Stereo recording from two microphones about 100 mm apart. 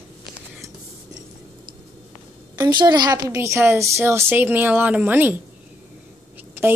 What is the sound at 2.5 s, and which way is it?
Speech, 45° right (ahead or behind).